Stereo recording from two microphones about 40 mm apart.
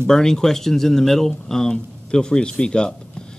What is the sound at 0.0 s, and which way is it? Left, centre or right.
A man's voice, centre.